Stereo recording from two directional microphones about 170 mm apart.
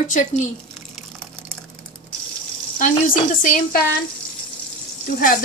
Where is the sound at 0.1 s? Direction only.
50° left (ahead or behind).